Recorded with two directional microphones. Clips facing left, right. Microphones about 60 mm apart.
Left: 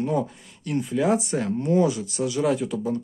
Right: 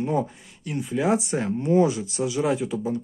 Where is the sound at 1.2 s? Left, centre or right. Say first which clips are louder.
Even; right.